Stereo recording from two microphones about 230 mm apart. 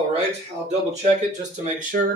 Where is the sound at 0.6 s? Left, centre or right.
Right.